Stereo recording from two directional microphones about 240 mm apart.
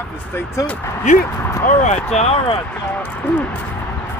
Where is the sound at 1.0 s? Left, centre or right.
Left.